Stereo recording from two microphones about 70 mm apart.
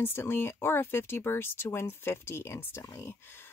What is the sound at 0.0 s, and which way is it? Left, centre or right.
A woman's voice, left.